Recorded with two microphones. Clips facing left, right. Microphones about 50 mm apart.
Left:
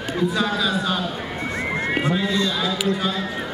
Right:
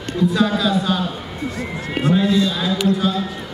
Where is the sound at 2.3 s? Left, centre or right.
Centre.